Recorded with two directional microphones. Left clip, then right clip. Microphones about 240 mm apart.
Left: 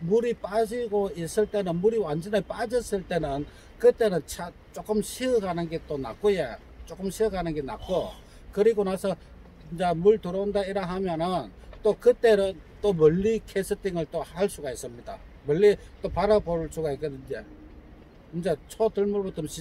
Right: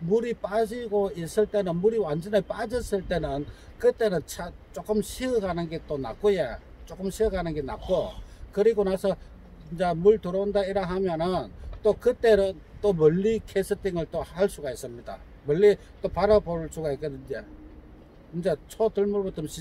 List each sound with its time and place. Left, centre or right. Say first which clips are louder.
0.1 s a man's voice: left 1 dB; centre